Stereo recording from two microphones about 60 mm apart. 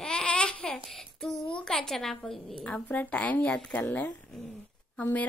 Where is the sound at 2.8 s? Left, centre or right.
Left.